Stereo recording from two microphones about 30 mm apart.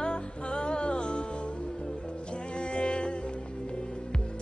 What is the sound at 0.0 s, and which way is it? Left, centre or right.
Music, left.